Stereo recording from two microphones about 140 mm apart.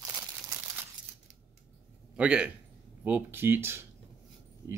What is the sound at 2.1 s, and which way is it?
A man's voice, 5° right (ahead or behind).